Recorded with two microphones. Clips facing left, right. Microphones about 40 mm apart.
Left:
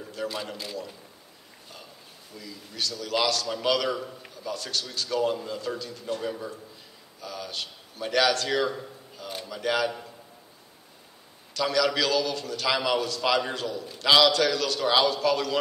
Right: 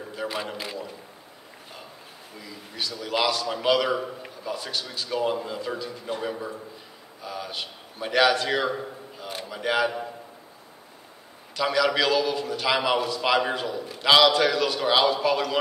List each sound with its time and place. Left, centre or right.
0.1 s a man's voice: centre
2.3 s a man's voice: right
11.5 s a man's voice: centre